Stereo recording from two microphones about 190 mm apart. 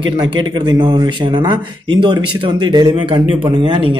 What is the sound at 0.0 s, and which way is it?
Speech, 25° right (ahead or behind).